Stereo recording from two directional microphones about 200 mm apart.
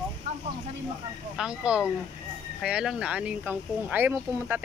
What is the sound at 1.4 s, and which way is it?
Speech, 5° right (ahead or behind).